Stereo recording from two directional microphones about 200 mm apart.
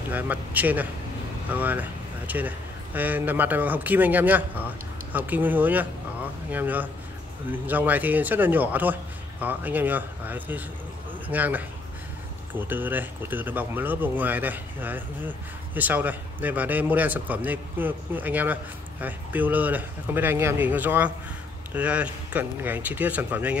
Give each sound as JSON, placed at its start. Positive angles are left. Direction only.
{"t": 0.1, "sound": "speech", "side_deg": -10}